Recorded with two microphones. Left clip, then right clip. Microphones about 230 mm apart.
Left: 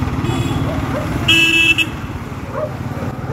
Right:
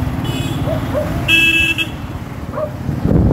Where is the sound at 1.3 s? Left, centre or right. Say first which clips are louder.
Left 1 dB; left.